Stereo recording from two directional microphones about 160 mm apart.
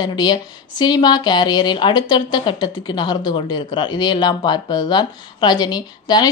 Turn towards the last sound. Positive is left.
turn(degrees=25)  # may be behind; listen again after turning